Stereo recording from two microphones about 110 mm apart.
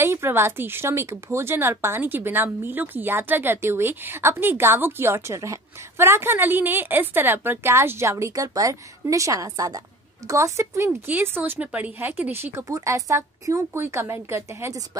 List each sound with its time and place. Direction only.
0.0 s speech: 20° right (ahead or behind)